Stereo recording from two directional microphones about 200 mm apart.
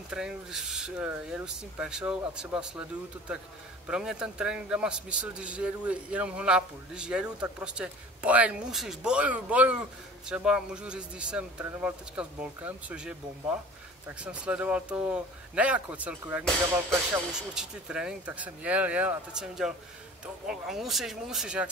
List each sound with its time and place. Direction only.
0.1 s a man's voice: 5° right (ahead or behind)
3.8 s a man's voice: 5° right (ahead or behind)